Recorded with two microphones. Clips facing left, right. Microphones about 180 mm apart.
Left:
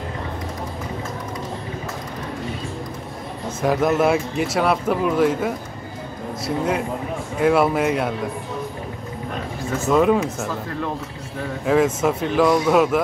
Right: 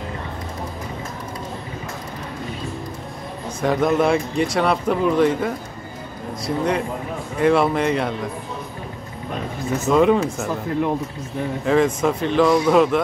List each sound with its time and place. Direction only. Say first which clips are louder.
3.6 s speech: even; 5° left (ahead or behind)
9.8 s speech: right 1 dB; centre (ahead or behind)
11.6 s speech: even; 5° left (ahead or behind)